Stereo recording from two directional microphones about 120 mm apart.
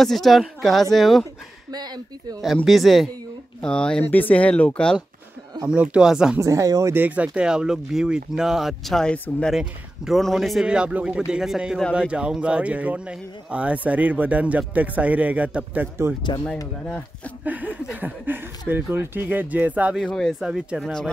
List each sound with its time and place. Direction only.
0.0 s speech: centre (ahead or behind)
1.7 s speech: 35° right (ahead or behind)
2.4 s speech: centre (ahead or behind)
5.7 s speech: 5° right (ahead or behind)
6.4 s speech: 25° right (ahead or behind); by 9.5 s 10° left (ahead or behind)
9.5 s speech: 5° right (ahead or behind)
16.8 s speech: 10° left (ahead or behind)
17.5 s speech: 15° right (ahead or behind)
20.0 s speech: 5° left (ahead or behind)